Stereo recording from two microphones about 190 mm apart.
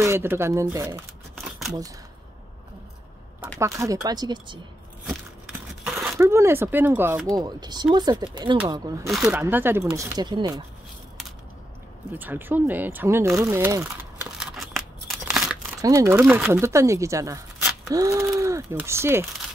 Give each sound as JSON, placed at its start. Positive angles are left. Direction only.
{"t": 0.0, "sound": "speech", "side_deg": -15}
{"t": 1.4, "sound": "a sound", "side_deg": 0}
{"t": 3.5, "sound": "speech", "side_deg": -15}
{"t": 5.9, "sound": "zipper", "side_deg": -5}
{"t": 6.1, "sound": "speech", "side_deg": -15}
{"t": 9.1, "sound": "speech", "side_deg": -5}
{"t": 12.1, "sound": "speech", "side_deg": -10}
{"t": 14.4, "sound": "tearing", "side_deg": 0}
{"t": 15.8, "sound": "speech", "side_deg": -15}